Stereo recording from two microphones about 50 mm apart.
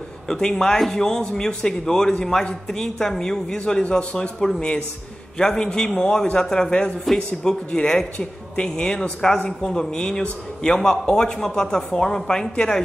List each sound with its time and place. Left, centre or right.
0.3 s a man's voice: centre